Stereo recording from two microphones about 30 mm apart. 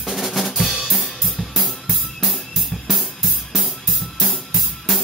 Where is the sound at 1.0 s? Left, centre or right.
Centre.